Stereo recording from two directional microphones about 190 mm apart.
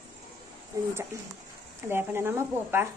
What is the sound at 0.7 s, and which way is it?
Speech, 15° right (ahead or behind).